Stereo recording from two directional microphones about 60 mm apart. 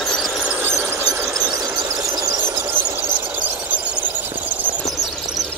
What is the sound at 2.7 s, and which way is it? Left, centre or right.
Squeal, right.